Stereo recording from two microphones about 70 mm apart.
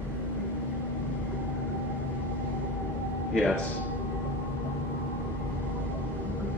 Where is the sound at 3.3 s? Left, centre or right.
Centre.